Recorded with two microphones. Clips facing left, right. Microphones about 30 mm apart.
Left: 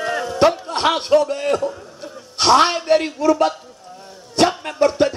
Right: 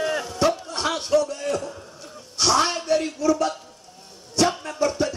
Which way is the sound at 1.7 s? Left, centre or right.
Centre.